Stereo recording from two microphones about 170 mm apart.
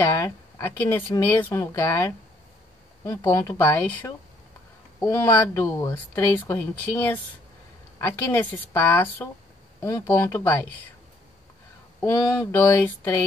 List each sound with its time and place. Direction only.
0.0 s speech: 15° left (ahead or behind)
12.0 s speech: 15° left (ahead or behind)